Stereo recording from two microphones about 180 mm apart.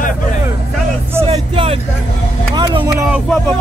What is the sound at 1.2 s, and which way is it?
Vehicle, 30° right (ahead or behind).